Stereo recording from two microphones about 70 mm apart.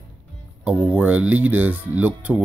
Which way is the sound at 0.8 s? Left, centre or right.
Centre.